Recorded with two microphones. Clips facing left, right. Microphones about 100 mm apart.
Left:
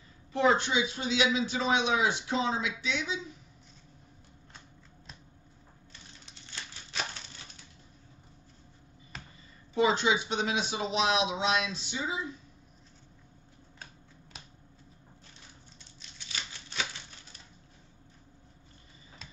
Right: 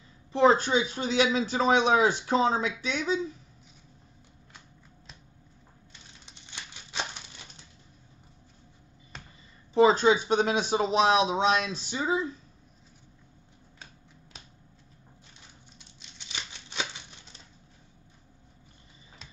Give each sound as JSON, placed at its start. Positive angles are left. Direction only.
{"t": 0.3, "sound": "speech", "side_deg": -35}
{"t": 6.2, "sound": "crumpling", "side_deg": -15}
{"t": 9.1, "sound": "a sound", "side_deg": 0}
{"t": 9.8, "sound": "speech", "side_deg": -40}
{"t": 16.0, "sound": "crumpling", "side_deg": -20}